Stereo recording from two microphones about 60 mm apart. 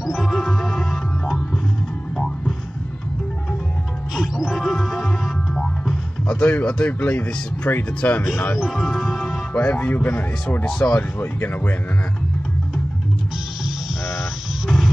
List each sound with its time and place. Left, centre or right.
0.0 s music: centre
2.1 s music: centre
4.1 s music: centre
6.2 s speech: left
8.5 s speech: centre
9.5 s speech: left